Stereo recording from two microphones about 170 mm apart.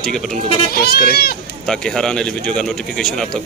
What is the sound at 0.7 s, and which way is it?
Speech, 65° left (ahead or behind).